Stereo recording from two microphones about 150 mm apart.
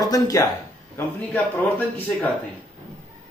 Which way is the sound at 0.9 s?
10° left (ahead or behind).